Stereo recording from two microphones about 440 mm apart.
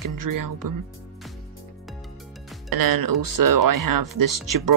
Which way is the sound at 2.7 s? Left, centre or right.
Right.